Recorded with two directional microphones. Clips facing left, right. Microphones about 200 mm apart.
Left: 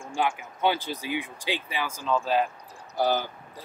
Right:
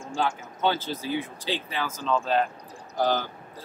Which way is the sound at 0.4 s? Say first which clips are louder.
Even; 15° left (ahead or behind).